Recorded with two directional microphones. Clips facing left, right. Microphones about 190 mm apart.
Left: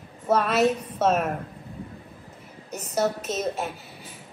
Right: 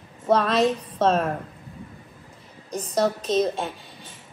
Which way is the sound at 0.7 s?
30° right (ahead or behind).